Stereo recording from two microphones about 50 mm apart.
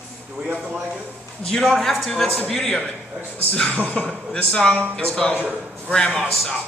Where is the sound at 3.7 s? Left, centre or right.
Left.